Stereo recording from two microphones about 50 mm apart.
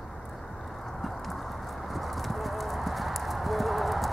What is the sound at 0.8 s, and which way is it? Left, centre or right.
Clip-clop, centre.